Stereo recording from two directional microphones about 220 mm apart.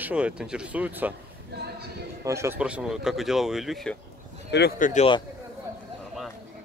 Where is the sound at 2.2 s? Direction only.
15° right (ahead or behind).